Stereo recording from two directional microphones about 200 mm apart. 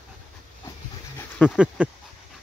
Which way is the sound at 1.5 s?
5° right (ahead or behind).